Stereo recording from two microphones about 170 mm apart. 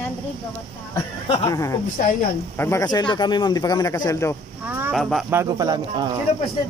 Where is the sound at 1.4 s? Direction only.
20° left (ahead or behind).